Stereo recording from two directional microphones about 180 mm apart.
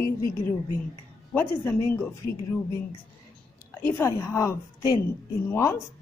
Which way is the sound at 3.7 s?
10° left (ahead or behind).